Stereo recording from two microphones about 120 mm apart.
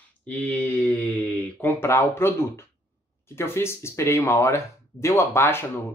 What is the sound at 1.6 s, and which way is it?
Speech, 20° left (ahead or behind).